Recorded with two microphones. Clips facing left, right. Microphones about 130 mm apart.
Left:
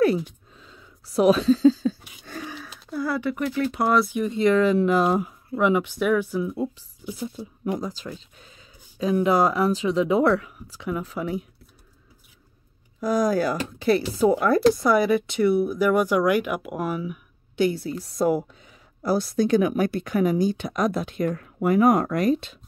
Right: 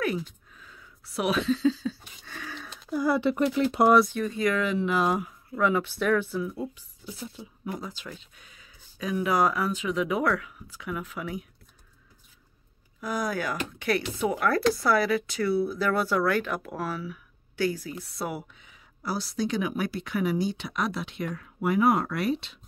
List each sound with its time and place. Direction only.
0.6 s a sound: 25° left (ahead or behind)
1.0 s speech: 40° left (ahead or behind)
2.5 s a sound: 5° left (ahead or behind)
2.9 s speech: 15° right (ahead or behind)
3.2 s speech: 25° right (ahead or behind)
4.2 s speech: 25° left (ahead or behind)
5.6 s speech: 15° left (ahead or behind)
7.8 s speech: 40° left (ahead or behind)
13.0 s speech: 40° left (ahead or behind)